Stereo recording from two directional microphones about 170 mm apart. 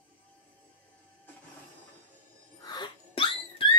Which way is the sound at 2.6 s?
25° left (ahead or behind).